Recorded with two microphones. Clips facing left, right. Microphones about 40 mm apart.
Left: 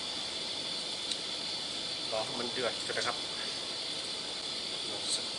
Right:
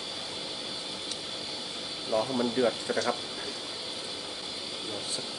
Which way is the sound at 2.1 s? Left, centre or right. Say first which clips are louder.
Right 9 dB; right.